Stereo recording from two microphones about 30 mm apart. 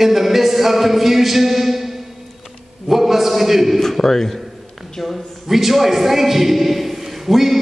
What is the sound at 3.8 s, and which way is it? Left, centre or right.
Speech, centre.